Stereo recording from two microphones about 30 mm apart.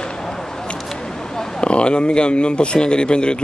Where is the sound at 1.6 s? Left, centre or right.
Left.